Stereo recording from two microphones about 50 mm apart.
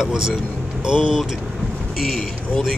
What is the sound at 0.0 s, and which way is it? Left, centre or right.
Speech, centre.